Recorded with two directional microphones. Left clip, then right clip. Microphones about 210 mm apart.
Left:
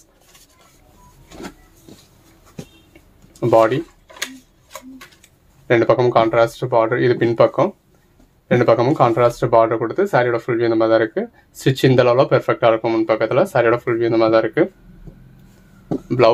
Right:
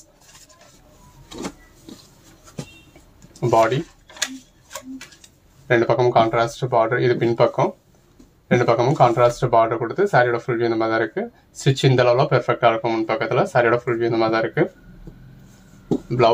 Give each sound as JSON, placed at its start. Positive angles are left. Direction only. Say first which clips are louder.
{"t": 3.3, "sound": "speech", "louder": "left 3 dB", "side_deg": 45}
{"t": 5.7, "sound": "speech", "louder": "left 3 dB", "side_deg": 50}